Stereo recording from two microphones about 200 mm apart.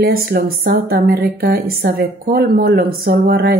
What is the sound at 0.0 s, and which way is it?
A woman's voice, 50° right (ahead or behind).